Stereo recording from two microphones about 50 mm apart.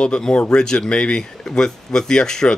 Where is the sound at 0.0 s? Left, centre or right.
Centre.